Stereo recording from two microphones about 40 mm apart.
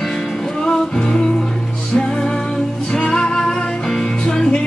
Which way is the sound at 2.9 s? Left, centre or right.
Left.